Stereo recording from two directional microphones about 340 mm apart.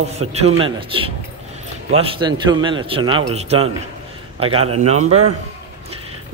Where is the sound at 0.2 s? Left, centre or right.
Centre.